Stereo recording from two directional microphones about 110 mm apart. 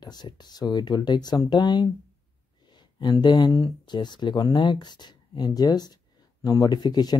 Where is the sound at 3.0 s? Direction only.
40° left (ahead or behind).